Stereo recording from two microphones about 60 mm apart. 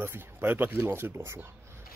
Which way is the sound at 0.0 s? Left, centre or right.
Right.